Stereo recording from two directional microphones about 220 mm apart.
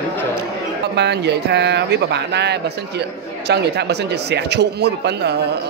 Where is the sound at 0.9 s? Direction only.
50° right (ahead or behind).